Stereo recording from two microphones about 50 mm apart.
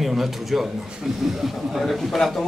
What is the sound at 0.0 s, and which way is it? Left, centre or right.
Speech, centre.